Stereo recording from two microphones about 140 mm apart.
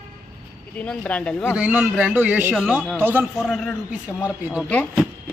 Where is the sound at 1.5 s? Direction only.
10° right (ahead or behind).